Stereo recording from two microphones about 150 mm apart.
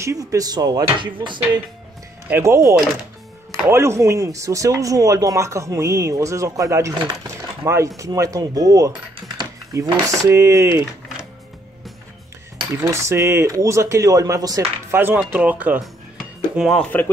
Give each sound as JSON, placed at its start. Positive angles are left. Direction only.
{"t": 0.0, "sound": "speech", "side_deg": -20}
{"t": 2.2, "sound": "speech", "side_deg": -15}
{"t": 12.5, "sound": "speech", "side_deg": -20}